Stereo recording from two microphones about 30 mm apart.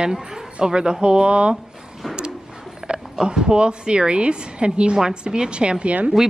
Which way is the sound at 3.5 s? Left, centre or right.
Right.